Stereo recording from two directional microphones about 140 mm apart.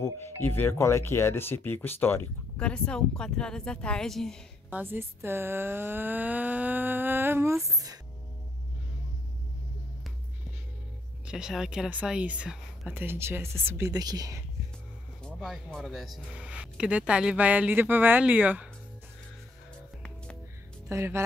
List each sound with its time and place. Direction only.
0.0 s speech: 15° left (ahead or behind)
4.6 s speech: 15° right (ahead or behind)
11.2 s speech: 5° right (ahead or behind); by 14.4 s 25° right (ahead or behind)
15.2 s speech: centre (ahead or behind)
20.9 s speech: 20° right (ahead or behind)